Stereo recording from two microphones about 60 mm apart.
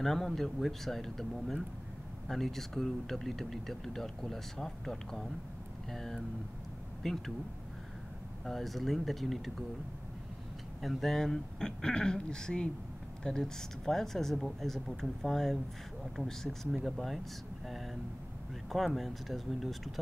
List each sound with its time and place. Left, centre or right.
0.0 s speech: centre
8.5 s speech: centre
10.8 s speech: centre
18.9 s speech: centre